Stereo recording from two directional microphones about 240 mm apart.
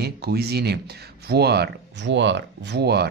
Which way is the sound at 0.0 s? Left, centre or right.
Right.